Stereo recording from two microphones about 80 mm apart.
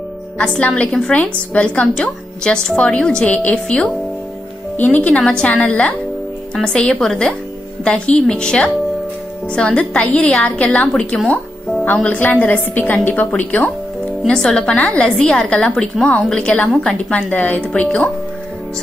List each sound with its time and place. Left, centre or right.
0.4 s a woman's voice: centre
11.1 s music: centre
11.8 s a woman's voice: centre